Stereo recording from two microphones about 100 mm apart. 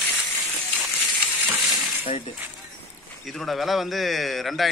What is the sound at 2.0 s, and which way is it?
Speech, 75° left (ahead or behind).